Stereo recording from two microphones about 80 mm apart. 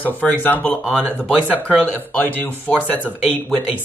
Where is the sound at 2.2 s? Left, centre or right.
Left.